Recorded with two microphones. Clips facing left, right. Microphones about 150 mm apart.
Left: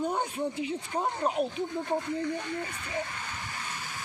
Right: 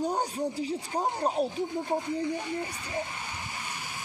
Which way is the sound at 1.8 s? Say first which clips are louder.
Even; 10° right (ahead or behind).